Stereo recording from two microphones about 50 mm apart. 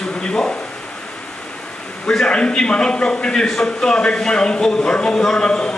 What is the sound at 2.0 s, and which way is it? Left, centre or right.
A man's voice, centre.